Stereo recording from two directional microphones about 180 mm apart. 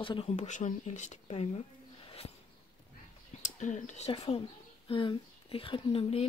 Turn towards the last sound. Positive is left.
turn(degrees=35)  # may be behind; listen again after turning